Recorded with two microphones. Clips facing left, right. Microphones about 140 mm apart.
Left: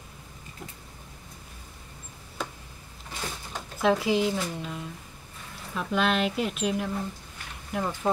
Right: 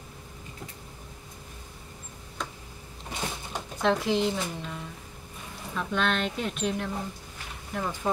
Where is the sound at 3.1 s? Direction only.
20° right (ahead or behind).